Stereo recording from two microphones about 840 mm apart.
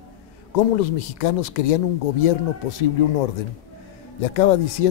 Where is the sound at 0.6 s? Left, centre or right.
Left.